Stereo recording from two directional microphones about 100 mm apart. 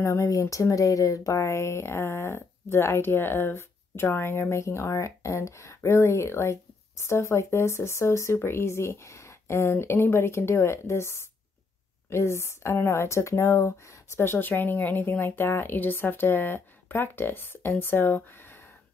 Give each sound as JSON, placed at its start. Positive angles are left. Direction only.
{"t": 0.0, "sound": "speech", "side_deg": 30}